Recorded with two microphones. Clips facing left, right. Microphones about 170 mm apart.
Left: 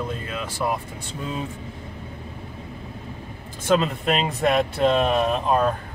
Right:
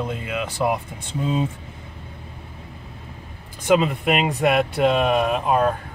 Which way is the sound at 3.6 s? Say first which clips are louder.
Right 2 dB; 10° right (ahead or behind).